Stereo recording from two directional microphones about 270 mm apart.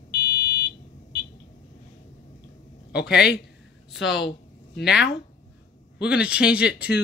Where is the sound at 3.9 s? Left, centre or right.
Centre.